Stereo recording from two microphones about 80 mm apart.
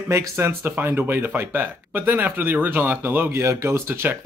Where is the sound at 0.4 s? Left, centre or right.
Right.